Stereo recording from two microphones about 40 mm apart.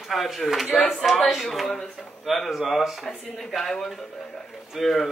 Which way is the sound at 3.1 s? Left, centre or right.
Centre.